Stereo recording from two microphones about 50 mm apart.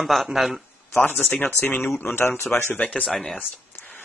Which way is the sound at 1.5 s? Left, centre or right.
Left.